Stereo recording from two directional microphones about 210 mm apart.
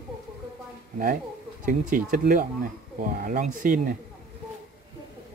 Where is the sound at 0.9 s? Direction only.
40° right (ahead or behind).